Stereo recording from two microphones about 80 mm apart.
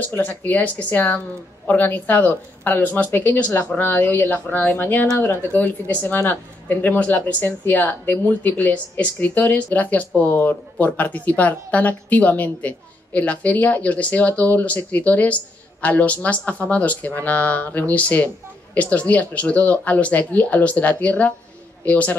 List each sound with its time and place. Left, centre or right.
0.0 s speech: left